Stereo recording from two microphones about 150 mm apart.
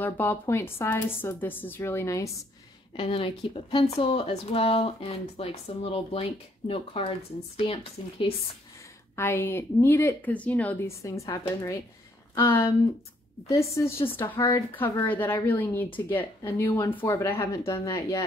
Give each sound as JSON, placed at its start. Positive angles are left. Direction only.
{"t": 0.0, "sound": "a woman's voice", "side_deg": 15}
{"t": 3.0, "sound": "speech", "side_deg": 35}
{"t": 9.1, "sound": "a woman's voice", "side_deg": 15}
{"t": 11.0, "sound": "a woman's voice", "side_deg": 20}